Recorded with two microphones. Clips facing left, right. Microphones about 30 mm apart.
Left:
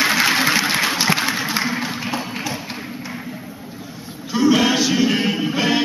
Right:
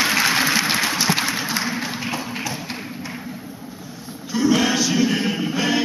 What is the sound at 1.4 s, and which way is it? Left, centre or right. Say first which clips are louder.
Tap: left 2 dB; centre.